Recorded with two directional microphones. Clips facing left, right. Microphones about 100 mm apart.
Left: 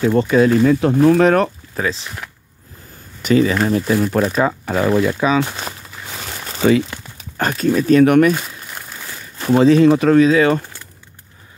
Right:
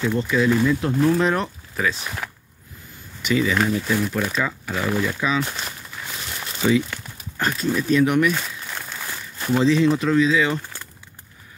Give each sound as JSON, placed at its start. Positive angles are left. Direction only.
{"t": 0.2, "sound": "speech", "side_deg": 55}
{"t": 1.0, "sound": "speech", "side_deg": 70}
{"t": 1.8, "sound": "speech", "side_deg": 35}
{"t": 3.2, "sound": "speech", "side_deg": 45}
{"t": 5.0, "sound": "speech", "side_deg": 65}
{"t": 5.6, "sound": "crumpling", "side_deg": 45}
{"t": 7.3, "sound": "speech", "side_deg": 60}
{"t": 9.5, "sound": "speech", "side_deg": 55}